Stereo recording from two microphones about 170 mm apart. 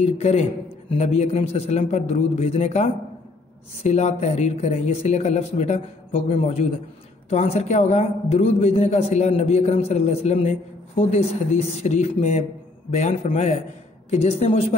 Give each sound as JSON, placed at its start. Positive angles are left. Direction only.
{"t": 0.0, "sound": "a man's voice", "side_deg": 40}